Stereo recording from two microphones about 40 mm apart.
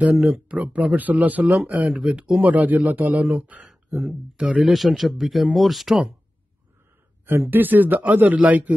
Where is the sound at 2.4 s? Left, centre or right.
Right.